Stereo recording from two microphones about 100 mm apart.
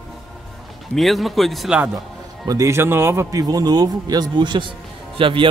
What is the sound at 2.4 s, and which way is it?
Speech, 35° right (ahead or behind).